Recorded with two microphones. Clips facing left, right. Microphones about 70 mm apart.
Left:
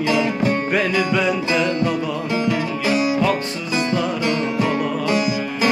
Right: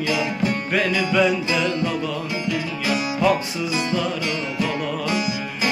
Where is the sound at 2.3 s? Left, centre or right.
Left.